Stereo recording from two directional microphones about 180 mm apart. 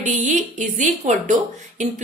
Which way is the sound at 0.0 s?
45° right (ahead or behind).